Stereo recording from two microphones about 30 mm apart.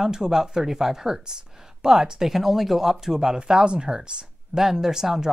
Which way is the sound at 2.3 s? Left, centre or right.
Centre.